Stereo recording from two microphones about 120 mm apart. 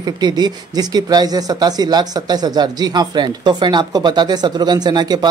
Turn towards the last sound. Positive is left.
turn(degrees=-35)  # may be behind; listen again after turning